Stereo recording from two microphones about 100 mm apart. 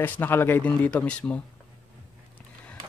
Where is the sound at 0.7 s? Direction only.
10° left (ahead or behind).